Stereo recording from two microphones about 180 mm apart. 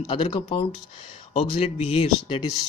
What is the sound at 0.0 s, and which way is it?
Speech, 30° left (ahead or behind).